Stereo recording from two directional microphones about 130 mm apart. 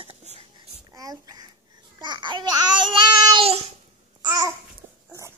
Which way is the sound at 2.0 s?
35° right (ahead or behind).